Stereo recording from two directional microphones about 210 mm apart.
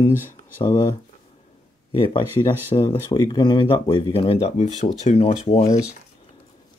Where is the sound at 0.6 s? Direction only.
20° left (ahead or behind).